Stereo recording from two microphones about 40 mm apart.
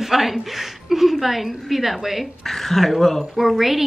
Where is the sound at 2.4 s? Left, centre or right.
Centre.